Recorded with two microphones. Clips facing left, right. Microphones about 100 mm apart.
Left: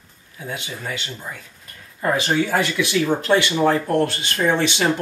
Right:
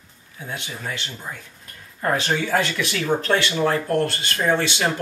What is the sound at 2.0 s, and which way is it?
Speech, 10° left (ahead or behind).